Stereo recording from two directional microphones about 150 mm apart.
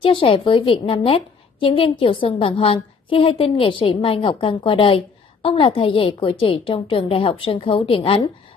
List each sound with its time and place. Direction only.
0.0 s a woman's voice: 35° left (ahead or behind)